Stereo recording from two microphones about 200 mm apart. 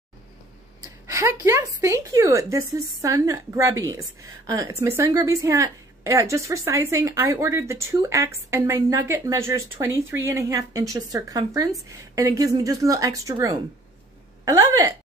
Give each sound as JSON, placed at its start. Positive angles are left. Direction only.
{"t": 1.0, "sound": "speech", "side_deg": -15}